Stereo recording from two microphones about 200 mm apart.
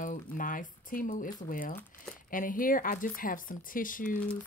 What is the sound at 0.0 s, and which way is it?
Speech, 40° left (ahead or behind).